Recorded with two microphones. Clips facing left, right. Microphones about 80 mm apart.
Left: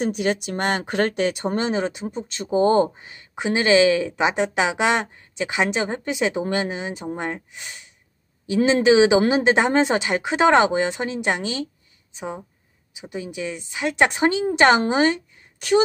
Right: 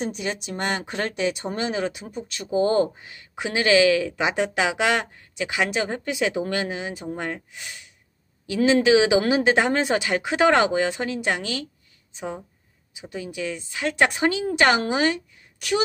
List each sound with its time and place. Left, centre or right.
0.0 s speech: left
1.6 s speech: left